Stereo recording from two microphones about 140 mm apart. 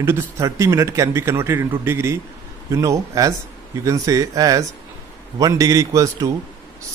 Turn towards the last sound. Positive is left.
turn(degrees=-25)  # may be behind; listen again after turning